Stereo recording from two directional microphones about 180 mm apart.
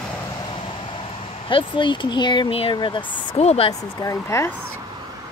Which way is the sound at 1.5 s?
25° left (ahead or behind).